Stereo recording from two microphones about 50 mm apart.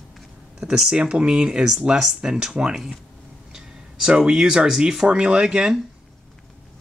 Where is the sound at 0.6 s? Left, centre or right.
Centre.